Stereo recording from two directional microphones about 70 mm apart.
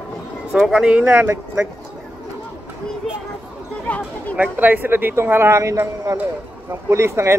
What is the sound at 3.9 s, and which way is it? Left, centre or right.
Speech, centre.